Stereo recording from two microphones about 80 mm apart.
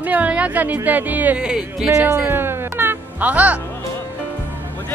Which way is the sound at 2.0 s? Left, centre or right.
Right.